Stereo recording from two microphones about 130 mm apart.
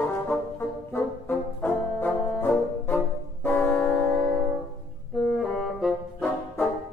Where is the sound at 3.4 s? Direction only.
15° left (ahead or behind).